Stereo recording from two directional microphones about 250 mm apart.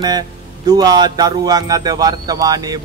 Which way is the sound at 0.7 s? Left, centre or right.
Centre.